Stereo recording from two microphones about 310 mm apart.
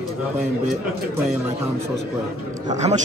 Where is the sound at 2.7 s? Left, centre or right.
Right.